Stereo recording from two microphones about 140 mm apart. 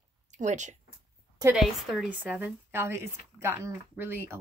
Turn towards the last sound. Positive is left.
turn(degrees=-15)  # may be behind; listen again after turning